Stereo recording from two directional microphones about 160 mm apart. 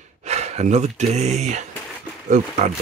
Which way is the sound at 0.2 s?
45° right (ahead or behind).